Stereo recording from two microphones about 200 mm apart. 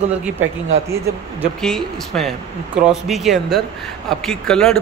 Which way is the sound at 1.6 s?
Centre (ahead or behind).